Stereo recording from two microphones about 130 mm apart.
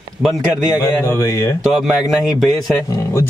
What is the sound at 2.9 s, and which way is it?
Speech, 20° left (ahead or behind).